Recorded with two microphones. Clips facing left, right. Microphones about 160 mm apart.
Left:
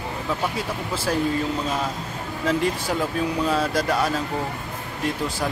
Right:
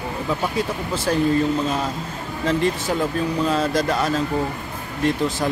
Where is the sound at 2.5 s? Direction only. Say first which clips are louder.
Right 2 dB; 5° left (ahead or behind).